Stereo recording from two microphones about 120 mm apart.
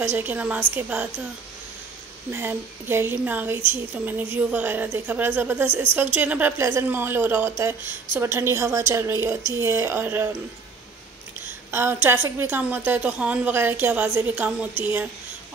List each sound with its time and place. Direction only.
0.0 s a woman's voice: 15° right (ahead or behind)
2.3 s a woman's voice: 15° right (ahead or behind)
11.7 s a woman's voice: 20° right (ahead or behind)